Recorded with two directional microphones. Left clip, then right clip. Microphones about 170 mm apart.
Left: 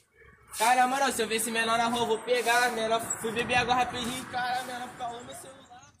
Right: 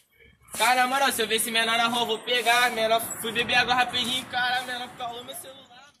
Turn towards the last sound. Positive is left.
turn(degrees=0)  # may be behind; listen again after turning